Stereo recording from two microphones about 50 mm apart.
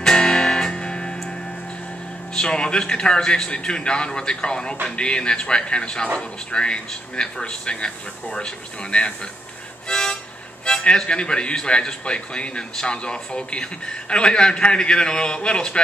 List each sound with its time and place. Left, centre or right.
0.0 s music: centre
2.3 s a man's voice: centre
9.8 s music: centre
10.6 s speech: centre